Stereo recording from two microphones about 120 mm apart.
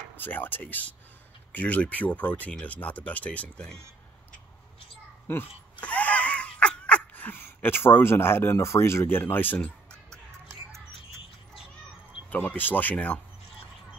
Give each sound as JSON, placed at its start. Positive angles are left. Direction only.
{"t": 0.1, "sound": "speech", "side_deg": 15}
{"t": 5.3, "sound": "a sound", "side_deg": 15}
{"t": 12.3, "sound": "speech", "side_deg": 15}